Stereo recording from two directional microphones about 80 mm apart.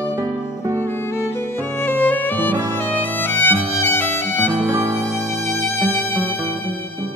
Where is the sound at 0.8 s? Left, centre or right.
Left.